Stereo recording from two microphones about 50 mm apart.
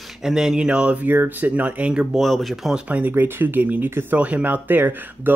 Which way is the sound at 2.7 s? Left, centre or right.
Right.